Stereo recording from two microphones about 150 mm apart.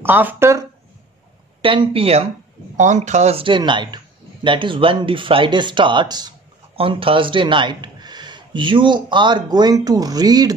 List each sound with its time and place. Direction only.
0.0 s speech: 15° right (ahead or behind)
1.6 s a man's voice: 35° right (ahead or behind)
2.8 s a man's voice: 55° right (ahead or behind); by 10.5 s 25° right (ahead or behind)